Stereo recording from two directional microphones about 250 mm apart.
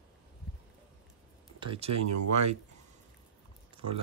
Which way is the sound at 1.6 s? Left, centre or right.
Right.